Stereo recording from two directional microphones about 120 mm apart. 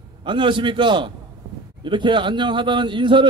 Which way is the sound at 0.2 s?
40° right (ahead or behind).